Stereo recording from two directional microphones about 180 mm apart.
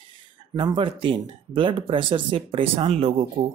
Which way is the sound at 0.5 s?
25° right (ahead or behind).